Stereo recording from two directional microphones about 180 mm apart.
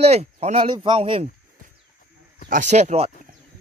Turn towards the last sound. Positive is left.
turn(degrees=-35)  # may be behind; listen again after turning